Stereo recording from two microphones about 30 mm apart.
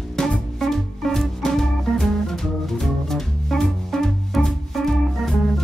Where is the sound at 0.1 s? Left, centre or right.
Centre.